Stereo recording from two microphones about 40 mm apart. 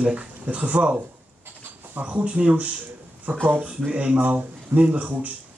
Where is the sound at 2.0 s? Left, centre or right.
Right.